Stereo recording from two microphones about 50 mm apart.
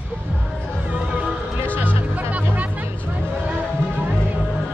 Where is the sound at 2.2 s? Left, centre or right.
Right.